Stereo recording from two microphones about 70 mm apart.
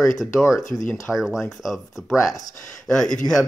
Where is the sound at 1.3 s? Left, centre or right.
Centre.